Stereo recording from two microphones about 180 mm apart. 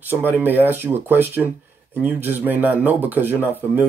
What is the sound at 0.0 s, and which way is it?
Speech, 10° right (ahead or behind).